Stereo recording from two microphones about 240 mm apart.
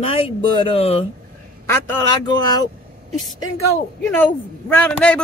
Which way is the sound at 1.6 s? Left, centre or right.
Centre.